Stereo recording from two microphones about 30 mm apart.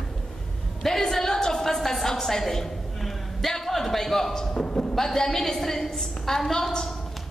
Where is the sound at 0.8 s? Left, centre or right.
Centre.